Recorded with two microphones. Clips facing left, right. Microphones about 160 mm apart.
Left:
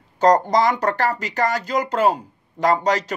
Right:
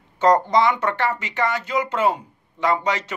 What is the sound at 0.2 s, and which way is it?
Speech, 40° left (ahead or behind).